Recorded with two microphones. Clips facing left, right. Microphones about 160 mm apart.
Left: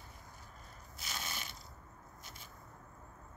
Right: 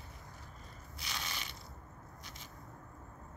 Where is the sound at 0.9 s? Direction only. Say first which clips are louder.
Right 1 dB; 50° left (ahead or behind).